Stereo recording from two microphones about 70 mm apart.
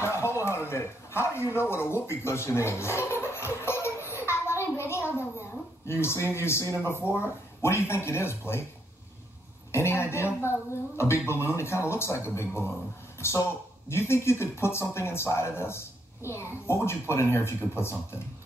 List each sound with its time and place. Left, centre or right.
0.0 s a sound: left
5.9 s speech: left
9.7 s speech: left